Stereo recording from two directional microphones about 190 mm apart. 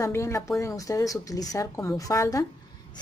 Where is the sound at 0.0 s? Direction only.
15° left (ahead or behind).